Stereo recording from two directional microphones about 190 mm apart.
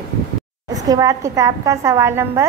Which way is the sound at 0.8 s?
20° right (ahead or behind).